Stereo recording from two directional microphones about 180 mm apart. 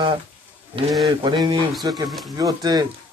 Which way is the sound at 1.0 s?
25° right (ahead or behind).